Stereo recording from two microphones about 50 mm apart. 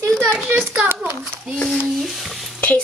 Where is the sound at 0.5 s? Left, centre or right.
Right.